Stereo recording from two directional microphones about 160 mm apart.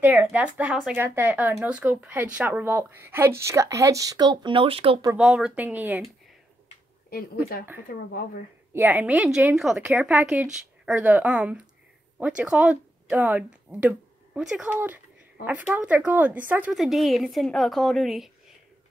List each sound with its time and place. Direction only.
0.0 s speech: 10° right (ahead or behind); by 5.0 s 35° right (ahead or behind)
5.1 s speech: 5° right (ahead or behind)
7.9 s speech: 75° left (ahead or behind)
8.7 s a woman's voice: 10° right (ahead or behind)